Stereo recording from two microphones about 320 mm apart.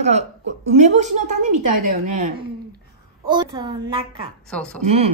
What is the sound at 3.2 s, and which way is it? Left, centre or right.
A woman's voice, centre.